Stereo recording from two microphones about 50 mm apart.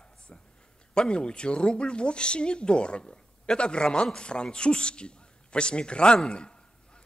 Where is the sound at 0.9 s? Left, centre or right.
Centre.